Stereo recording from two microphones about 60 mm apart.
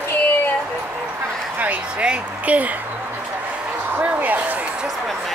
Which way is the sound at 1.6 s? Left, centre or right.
Right.